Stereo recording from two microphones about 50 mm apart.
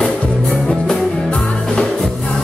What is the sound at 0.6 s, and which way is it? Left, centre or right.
Music, centre.